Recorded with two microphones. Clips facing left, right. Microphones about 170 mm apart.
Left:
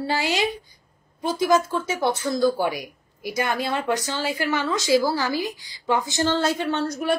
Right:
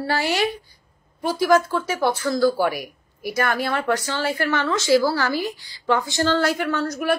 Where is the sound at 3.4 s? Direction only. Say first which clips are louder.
Right 2 dB; 15° left (ahead or behind).